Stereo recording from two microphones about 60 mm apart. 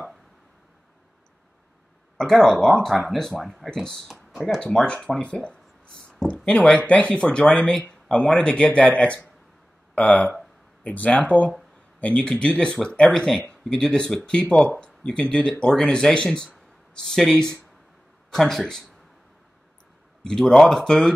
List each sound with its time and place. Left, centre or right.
2.1 s speech: centre
4.1 s speech: centre
4.6 s speech: centre
5.2 s a sound: centre
6.2 s speech: centre
20.2 s speech: centre